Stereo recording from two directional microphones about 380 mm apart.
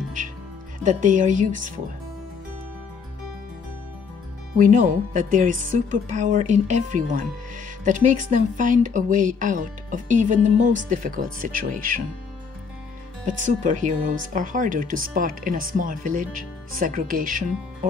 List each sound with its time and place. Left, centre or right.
0.8 s a woman's voice: centre
4.6 s a woman's voice: centre
13.5 s a woman's voice: centre